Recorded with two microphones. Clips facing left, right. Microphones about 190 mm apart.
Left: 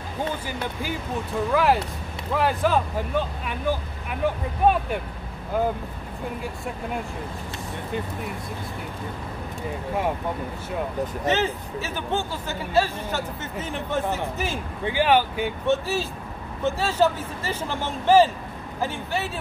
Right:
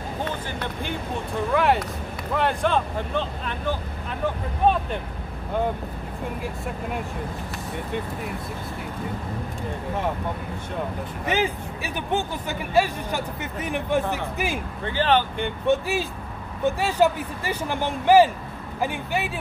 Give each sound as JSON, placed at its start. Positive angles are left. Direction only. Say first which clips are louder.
{"t": 1.5, "sound": "speech", "louder": "even", "side_deg": 0}
{"t": 11.2, "sound": "speech", "louder": "right 1 dB", "side_deg": -10}
{"t": 14.9, "sound": "speech", "louder": "left 1 dB", "side_deg": 10}
{"t": 15.6, "sound": "speech", "louder": "right 2 dB", "side_deg": -15}